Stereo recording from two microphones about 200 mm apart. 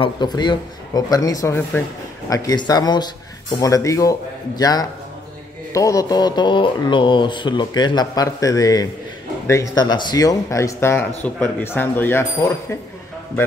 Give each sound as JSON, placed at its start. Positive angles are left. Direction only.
{"t": 0.0, "sound": "speech", "side_deg": 20}